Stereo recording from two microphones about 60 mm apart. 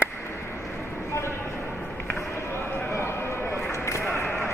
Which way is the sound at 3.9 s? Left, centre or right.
Left.